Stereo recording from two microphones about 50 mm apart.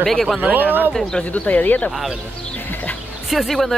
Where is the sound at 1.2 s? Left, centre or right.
Left.